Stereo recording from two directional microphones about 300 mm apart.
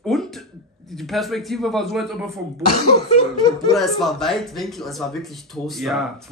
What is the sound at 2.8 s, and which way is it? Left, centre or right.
Cough, left.